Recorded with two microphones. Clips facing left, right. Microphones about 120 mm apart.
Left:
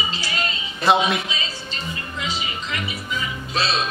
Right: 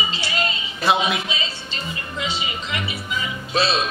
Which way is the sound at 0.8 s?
Centre (ahead or behind).